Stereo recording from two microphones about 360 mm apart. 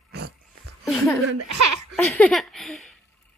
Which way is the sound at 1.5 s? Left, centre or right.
Right.